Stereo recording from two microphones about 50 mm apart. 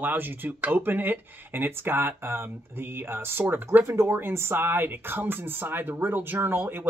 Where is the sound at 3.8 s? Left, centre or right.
Right.